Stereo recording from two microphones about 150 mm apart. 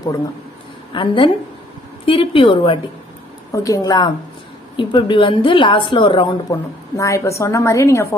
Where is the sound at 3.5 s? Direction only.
20° left (ahead or behind).